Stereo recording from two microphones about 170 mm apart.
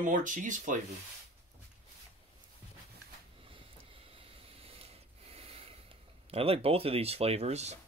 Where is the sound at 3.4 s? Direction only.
30° right (ahead or behind).